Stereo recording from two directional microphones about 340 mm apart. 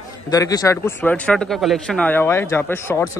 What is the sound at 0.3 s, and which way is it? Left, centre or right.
Speech, centre.